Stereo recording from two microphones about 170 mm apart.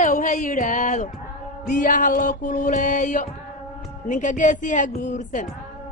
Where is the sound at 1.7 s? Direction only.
50° left (ahead or behind).